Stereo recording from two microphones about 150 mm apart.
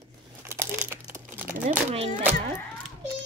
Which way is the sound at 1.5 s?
55° right (ahead or behind).